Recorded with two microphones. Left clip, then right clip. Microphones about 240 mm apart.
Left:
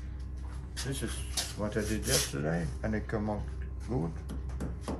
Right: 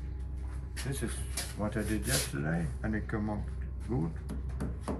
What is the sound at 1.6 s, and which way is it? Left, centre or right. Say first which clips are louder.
Rub: right 1 dB; centre.